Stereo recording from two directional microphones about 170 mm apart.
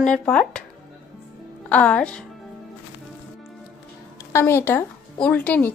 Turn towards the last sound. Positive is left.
turn(degrees=10)  # may be behind; listen again after turning